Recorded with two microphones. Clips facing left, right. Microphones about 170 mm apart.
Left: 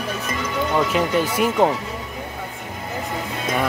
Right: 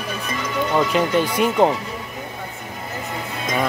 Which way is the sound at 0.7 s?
5° left (ahead or behind).